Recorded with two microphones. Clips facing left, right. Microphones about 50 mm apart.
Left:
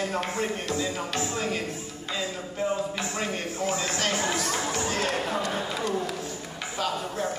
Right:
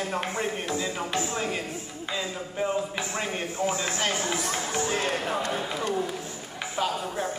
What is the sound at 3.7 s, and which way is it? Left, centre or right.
Speech, centre.